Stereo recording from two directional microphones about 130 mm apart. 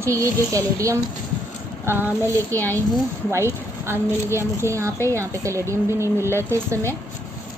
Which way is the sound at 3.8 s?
20° right (ahead or behind).